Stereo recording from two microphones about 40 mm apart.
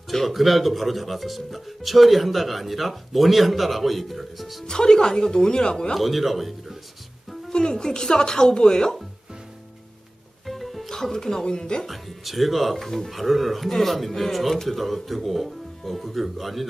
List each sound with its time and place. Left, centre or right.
0.1 s speech: centre
4.6 s speech: centre
5.9 s speech: centre
7.5 s speech: centre
10.4 s music: centre
11.4 s speech: left
11.8 s speech: centre